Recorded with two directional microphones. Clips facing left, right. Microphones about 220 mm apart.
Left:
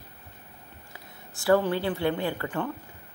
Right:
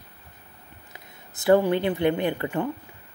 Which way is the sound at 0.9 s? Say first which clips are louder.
Left 1 dB; 20° right (ahead or behind).